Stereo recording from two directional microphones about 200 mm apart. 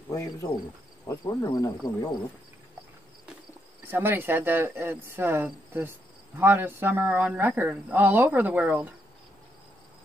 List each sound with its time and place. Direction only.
0.1 s cricket: 15° left (ahead or behind)
1.0 s speech: 20° left (ahead or behind)
3.8 s speech: 10° right (ahead or behind)